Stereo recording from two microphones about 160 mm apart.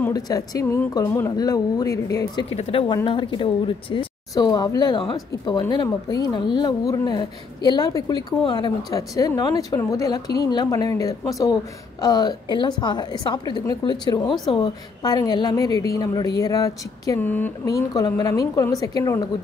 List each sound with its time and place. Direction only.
0.1 s speech: 20° left (ahead or behind)
2.5 s a woman's voice: 35° left (ahead or behind)